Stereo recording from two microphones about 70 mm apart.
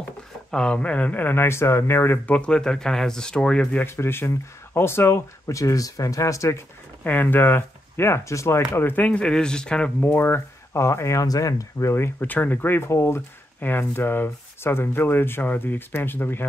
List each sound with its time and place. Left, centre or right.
0.5 s speech: centre; by 2.1 s left
2.2 s speech: centre
3.8 s speech: left
7.1 s speech: left
10.1 s speech: left
11.9 s speech: left
12.3 s speech: left
12.9 s speech: left
13.6 s speech: left